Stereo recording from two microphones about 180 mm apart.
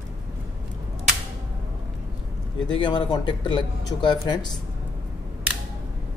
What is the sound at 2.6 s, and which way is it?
Speech, 25° left (ahead or behind).